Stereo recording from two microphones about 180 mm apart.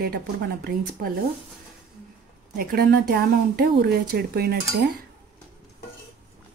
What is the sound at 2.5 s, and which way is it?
Speech, 55° right (ahead or behind).